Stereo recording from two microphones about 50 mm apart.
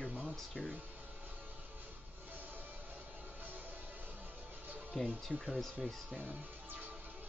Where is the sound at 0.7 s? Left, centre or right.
Right.